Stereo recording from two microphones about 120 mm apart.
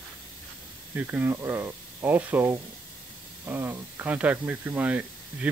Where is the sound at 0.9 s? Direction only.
15° right (ahead or behind).